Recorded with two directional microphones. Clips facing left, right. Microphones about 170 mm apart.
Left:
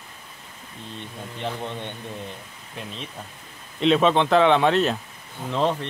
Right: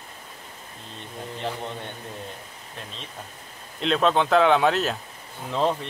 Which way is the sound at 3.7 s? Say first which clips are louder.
Left 3 dB; centre (ahead or behind).